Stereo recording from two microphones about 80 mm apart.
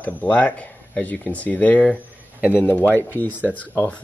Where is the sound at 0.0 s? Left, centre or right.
Centre.